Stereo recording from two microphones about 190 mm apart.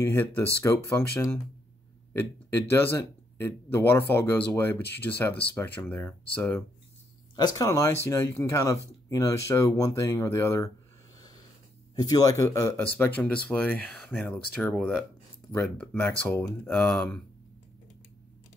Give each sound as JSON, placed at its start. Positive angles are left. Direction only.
{"t": 0.0, "sound": "speech", "side_deg": 10}
{"t": 2.7, "sound": "speech", "side_deg": 10}
{"t": 11.9, "sound": "speech", "side_deg": 20}